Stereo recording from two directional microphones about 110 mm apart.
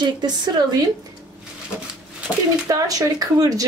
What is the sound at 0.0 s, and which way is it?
Speech, 40° right (ahead or behind).